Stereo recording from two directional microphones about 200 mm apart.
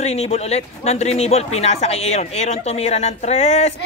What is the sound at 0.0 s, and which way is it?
Speech, 30° left (ahead or behind).